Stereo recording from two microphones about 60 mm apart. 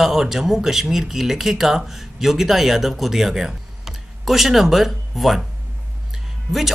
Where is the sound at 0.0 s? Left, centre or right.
Centre.